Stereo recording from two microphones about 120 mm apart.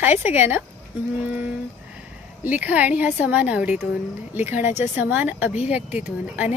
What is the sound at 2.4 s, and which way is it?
A woman's voice, 15° right (ahead or behind).